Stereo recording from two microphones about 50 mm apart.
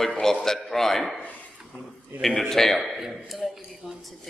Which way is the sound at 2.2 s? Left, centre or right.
Centre.